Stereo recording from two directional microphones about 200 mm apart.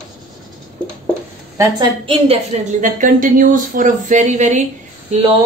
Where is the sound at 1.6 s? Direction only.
25° right (ahead or behind).